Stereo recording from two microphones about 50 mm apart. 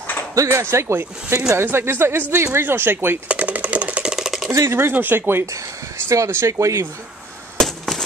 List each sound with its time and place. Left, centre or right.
0.3 s speech: right
1.5 s speech: right
2.3 s speech: right
2.6 s speech: right
3.3 s a sound: right
4.0 s chopping: centre
4.5 s speech: right
4.9 s speech: right
6.0 s speech: right
7.5 s a sound: centre